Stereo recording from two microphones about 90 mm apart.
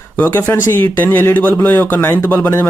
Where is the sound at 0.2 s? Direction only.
25° left (ahead or behind).